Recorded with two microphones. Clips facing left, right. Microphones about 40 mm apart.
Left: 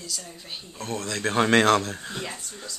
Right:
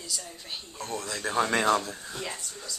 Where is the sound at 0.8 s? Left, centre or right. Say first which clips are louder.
Left 4 dB; left.